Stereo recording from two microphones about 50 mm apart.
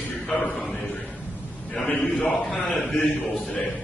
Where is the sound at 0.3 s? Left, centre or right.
Centre.